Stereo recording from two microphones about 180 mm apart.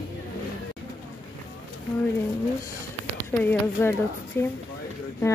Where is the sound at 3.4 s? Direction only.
10° left (ahead or behind).